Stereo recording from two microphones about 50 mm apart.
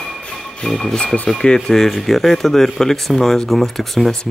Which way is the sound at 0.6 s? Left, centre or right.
Left.